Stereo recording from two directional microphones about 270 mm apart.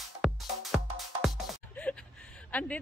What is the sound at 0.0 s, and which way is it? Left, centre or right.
Music, centre.